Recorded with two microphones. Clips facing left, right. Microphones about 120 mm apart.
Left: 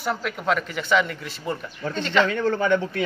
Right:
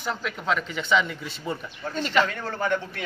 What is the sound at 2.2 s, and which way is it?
Speech, 90° left.